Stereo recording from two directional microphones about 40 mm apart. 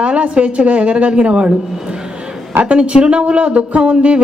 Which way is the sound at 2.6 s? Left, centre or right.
Right.